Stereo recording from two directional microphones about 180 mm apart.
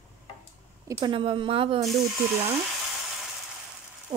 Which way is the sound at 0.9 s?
25° right (ahead or behind).